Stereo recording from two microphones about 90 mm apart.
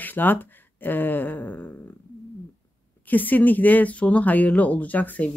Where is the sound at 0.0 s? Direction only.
20° left (ahead or behind).